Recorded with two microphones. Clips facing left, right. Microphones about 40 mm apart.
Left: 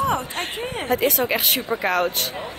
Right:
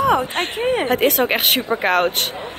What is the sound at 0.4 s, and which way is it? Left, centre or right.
A woman's voice, right.